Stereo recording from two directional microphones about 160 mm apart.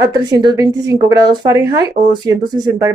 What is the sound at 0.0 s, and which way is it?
A woman's voice, 25° right (ahead or behind).